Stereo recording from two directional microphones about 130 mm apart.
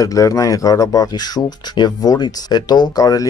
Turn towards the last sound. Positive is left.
turn(degrees=30)  # may be behind; listen again after turning